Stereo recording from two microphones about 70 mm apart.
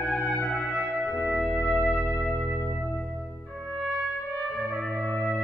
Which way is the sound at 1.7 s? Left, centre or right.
Centre.